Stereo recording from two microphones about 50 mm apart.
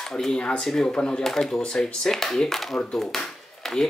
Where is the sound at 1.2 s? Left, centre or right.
Centre.